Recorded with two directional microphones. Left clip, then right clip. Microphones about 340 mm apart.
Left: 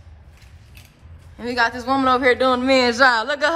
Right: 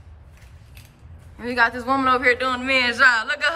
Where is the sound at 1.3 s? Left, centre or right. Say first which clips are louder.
Even; centre.